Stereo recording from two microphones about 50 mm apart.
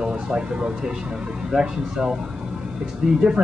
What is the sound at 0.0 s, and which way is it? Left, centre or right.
Speech, centre.